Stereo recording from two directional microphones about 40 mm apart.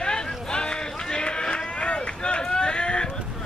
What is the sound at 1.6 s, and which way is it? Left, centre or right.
Run, left.